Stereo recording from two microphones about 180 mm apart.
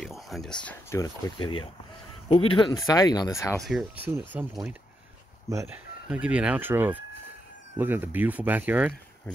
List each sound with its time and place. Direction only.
0.0 s speech: centre (ahead or behind)
0.7 s speech: 15° left (ahead or behind)
3.5 s speech: centre (ahead or behind)
5.5 s speech: 15° right (ahead or behind)
6.0 s speech: 5° right (ahead or behind)